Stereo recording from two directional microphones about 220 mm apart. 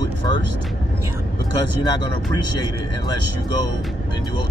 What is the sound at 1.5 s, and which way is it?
Speech, 20° left (ahead or behind).